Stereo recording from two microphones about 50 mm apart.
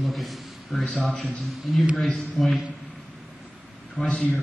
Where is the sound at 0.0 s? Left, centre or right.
Centre.